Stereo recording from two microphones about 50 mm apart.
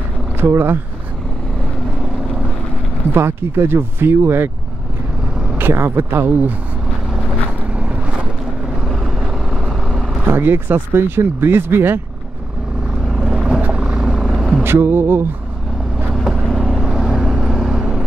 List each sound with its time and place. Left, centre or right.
0.4 s speech: right
3.1 s speech: right
5.6 s speech: right
7.7 s boat: right
8.8 s vehicle: centre
10.2 s speech: right
13.2 s vehicle: centre
14.2 s vehicle: centre
14.6 s a sound: right
16.3 s vehicle: centre
16.6 s vehicle: centre